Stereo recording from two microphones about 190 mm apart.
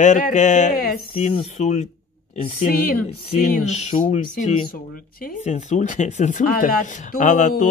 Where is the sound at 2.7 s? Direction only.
50° left (ahead or behind).